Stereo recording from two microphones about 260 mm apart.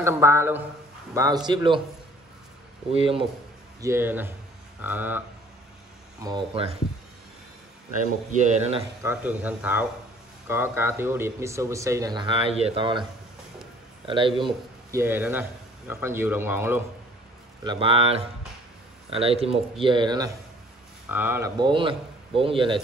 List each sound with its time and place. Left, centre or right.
0.0 s speech: centre
2.9 s speech: right
3.8 s speech: centre
6.2 s speech: centre
9.0 s speech: centre
14.0 s speech: centre
17.6 s speech: right